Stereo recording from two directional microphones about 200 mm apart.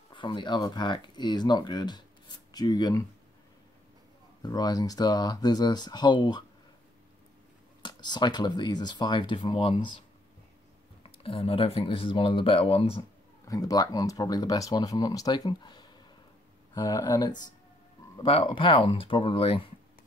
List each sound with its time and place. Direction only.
0.1 s speech: 25° left (ahead or behind)
4.4 s speech: 20° left (ahead or behind)
7.8 s speech: 20° left (ahead or behind)
11.0 s speech: 30° left (ahead or behind)
13.5 s speech: 20° left (ahead or behind)